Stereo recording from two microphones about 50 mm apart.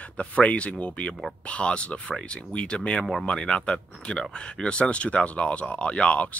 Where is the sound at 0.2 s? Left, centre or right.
Left.